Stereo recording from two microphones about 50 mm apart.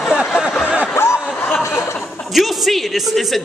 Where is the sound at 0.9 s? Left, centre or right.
Left.